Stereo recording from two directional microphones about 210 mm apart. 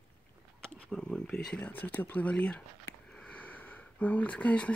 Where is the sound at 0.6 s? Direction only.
5° left (ahead or behind).